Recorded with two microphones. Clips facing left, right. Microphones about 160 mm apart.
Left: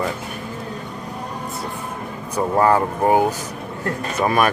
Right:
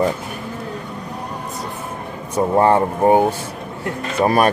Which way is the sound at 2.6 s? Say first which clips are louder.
Right 2 dB; 25° right (ahead or behind).